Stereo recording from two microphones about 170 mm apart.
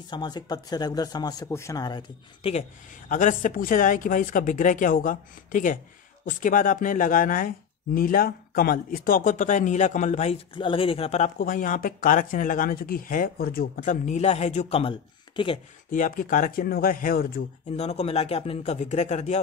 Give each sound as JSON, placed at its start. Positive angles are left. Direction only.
{"t": 0.1, "sound": "speech", "side_deg": 25}
{"t": 3.1, "sound": "speech", "side_deg": 50}
{"t": 10.5, "sound": "speech", "side_deg": 30}
{"t": 15.9, "sound": "speech", "side_deg": 55}
{"t": 17.7, "sound": "a man's voice", "side_deg": 40}